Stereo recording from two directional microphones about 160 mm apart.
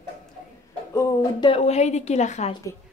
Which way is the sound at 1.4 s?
40° left (ahead or behind).